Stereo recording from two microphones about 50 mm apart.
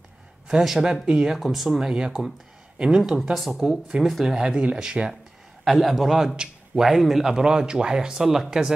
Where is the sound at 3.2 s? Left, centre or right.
Centre; by 4.8 s right.